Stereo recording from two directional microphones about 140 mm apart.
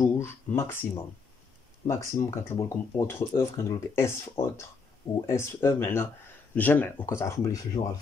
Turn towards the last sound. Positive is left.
turn(degrees=25)  # may be behind; listen again after turning